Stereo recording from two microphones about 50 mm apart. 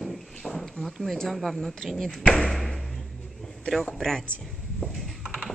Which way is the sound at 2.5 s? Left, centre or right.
Centre.